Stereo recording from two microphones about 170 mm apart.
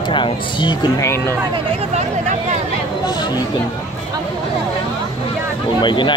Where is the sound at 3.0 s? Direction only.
25° left (ahead or behind).